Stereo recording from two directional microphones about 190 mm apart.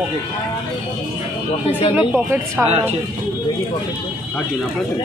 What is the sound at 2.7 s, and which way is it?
Speech, 35° right (ahead or behind).